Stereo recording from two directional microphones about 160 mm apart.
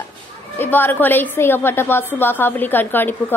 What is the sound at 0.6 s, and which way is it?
A woman's voice, 10° left (ahead or behind).